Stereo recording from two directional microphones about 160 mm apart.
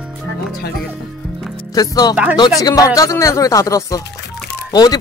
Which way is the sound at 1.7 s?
25° left (ahead or behind).